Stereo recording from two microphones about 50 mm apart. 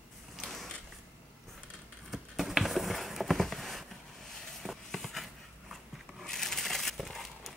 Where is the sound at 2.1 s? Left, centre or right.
Centre.